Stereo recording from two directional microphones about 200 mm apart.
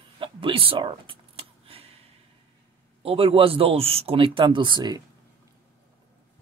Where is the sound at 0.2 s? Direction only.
25° right (ahead or behind).